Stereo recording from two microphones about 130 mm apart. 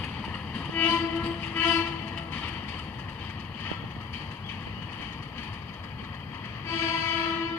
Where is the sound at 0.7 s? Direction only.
15° left (ahead or behind).